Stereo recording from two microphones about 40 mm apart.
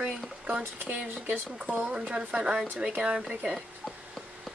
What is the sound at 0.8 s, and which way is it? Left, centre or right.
Speech, right.